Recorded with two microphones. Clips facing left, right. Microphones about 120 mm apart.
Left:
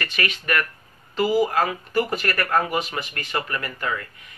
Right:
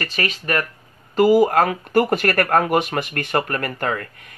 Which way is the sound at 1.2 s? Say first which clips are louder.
Right 6 dB; 55° right (ahead or behind).